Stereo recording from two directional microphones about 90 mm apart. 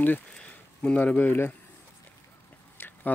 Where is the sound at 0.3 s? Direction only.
10° left (ahead or behind).